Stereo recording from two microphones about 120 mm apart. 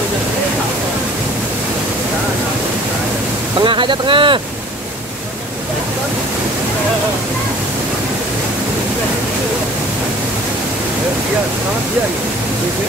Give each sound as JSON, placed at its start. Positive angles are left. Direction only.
{"t": 3.5, "sound": "boat", "side_deg": -40}